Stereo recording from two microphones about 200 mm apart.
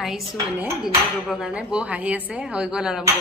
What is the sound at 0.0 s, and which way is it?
Speech, centre (ahead or behind).